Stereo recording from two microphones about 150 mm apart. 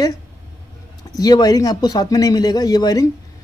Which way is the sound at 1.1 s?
25° left (ahead or behind).